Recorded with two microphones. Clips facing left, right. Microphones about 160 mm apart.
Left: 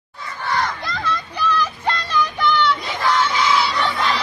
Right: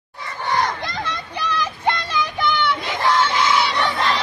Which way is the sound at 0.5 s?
20° right (ahead or behind).